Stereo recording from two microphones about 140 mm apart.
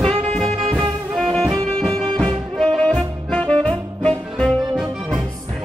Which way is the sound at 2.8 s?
5° left (ahead or behind).